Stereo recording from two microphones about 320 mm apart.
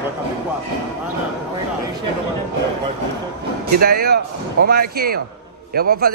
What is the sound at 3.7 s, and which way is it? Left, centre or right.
A man's voice, right.